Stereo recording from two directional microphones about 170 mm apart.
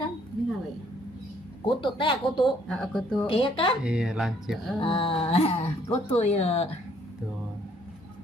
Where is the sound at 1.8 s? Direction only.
30° left (ahead or behind).